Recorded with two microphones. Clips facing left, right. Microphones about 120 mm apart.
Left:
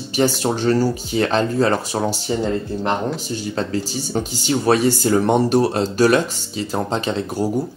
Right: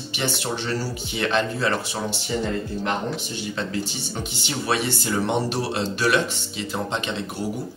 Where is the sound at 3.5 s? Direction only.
40° left (ahead or behind).